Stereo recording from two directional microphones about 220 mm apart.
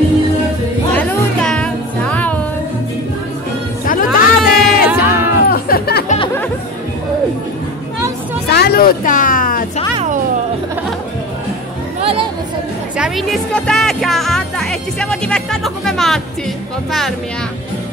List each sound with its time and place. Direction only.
0.9 s music: 5° left (ahead or behind)
3.8 s music: 40° left (ahead or behind)
4.4 s music: 5° right (ahead or behind)
5.5 s music: 45° left (ahead or behind)
8.5 s a sound: 45° left (ahead or behind)
12.0 s music: 25° right (ahead or behind)
12.9 s speech: centre (ahead or behind)